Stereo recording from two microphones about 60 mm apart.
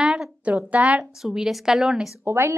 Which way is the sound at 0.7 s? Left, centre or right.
Centre.